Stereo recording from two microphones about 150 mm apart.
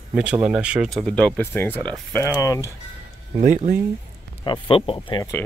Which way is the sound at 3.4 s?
55° right (ahead or behind).